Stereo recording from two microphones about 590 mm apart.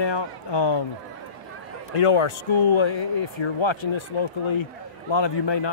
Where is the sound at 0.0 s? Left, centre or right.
Left.